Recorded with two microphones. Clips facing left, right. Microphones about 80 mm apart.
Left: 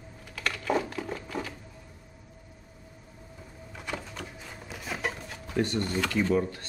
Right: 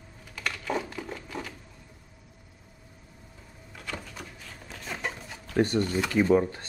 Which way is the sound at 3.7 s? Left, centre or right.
Centre.